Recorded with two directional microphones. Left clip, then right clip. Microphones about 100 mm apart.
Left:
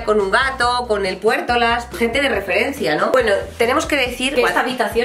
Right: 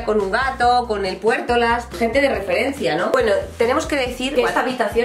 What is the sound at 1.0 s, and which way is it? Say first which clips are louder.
Speech: left 2 dB; 35° left (ahead or behind).